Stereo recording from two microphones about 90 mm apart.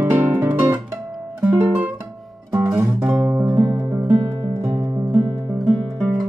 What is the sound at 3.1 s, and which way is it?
Music, 30° right (ahead or behind).